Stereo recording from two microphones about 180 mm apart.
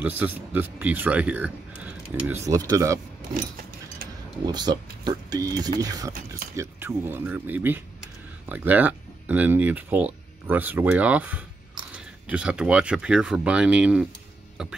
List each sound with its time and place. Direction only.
0.0 s speech: 10° right (ahead or behind)
4.5 s speech: 25° right (ahead or behind); by 14.7 s 5° right (ahead or behind)